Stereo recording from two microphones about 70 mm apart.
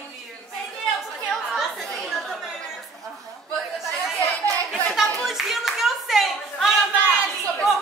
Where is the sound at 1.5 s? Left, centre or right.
Centre.